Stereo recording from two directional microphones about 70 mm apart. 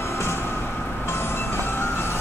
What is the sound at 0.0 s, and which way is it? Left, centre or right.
Train, left.